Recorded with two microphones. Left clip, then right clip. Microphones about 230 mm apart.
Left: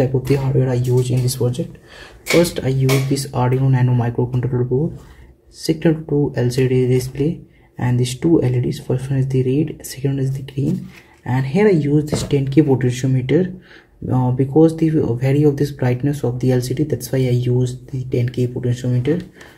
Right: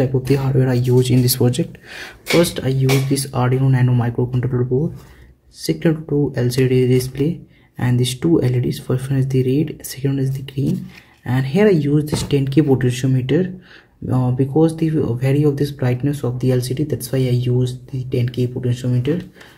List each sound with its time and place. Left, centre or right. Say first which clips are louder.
0.0 s speech: even; centre; by 1.6 s right
2.4 s speech: even; centre